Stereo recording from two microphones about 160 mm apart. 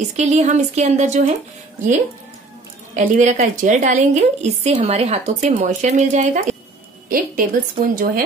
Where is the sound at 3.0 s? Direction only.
50° right (ahead or behind).